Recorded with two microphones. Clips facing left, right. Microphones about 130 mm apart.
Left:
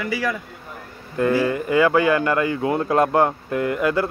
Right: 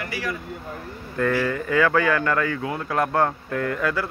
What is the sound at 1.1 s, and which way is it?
Speech, 20° left (ahead or behind).